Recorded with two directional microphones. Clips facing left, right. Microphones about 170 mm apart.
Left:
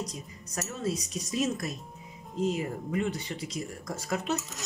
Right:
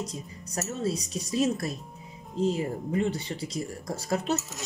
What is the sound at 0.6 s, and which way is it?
Speech, 30° right (ahead or behind).